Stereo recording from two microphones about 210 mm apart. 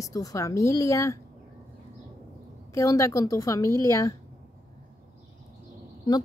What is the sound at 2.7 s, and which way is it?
Speech, 15° left (ahead or behind).